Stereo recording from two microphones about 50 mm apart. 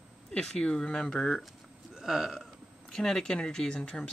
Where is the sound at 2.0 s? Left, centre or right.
Centre.